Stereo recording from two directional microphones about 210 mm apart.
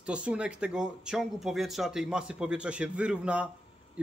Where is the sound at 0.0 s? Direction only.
5° right (ahead or behind).